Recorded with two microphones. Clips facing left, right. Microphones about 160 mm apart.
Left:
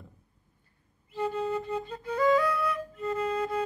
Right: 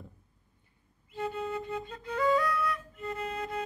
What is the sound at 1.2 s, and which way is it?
Music, 35° left (ahead or behind).